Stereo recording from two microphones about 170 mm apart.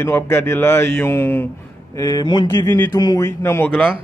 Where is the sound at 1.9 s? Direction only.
25° left (ahead or behind).